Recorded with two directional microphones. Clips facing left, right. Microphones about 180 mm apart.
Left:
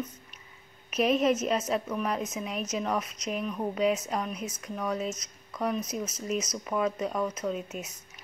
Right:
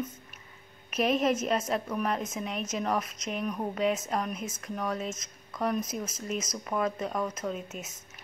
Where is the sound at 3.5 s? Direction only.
5° right (ahead or behind).